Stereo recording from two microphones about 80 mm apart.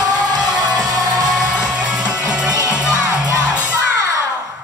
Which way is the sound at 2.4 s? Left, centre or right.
Right.